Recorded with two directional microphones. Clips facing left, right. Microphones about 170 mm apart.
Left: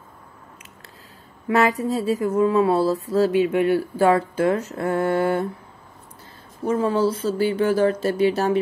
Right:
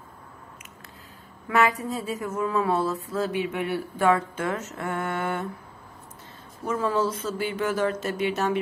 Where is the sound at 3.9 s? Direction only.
35° left (ahead or behind).